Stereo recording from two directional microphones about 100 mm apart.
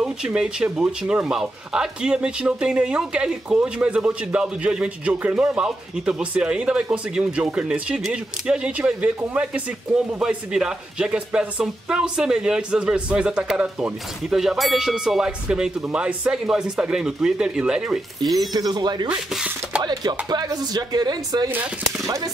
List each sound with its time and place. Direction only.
0.0 s speech: 10° right (ahead or behind)
18.5 s speech: 40° right (ahead or behind)
19.0 s speech: 10° right (ahead or behind)
19.9 s speech: 45° right (ahead or behind)
22.0 s speech: 35° right (ahead or behind)